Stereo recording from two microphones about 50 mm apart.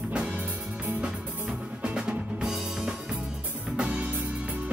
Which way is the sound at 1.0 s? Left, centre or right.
Centre.